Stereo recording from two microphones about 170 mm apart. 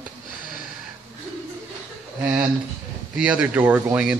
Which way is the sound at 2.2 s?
15° right (ahead or behind).